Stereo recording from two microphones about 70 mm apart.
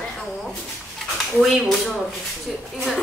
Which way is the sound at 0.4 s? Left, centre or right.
Centre.